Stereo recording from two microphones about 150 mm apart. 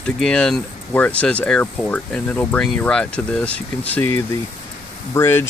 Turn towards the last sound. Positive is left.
turn(degrees=15)  # may be behind; listen again after turning